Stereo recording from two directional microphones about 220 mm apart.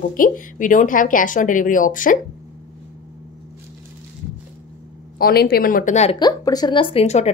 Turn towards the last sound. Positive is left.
turn(degrees=30)  # may be behind; listen again after turning